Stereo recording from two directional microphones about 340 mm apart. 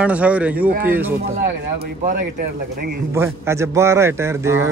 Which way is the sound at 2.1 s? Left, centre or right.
Right.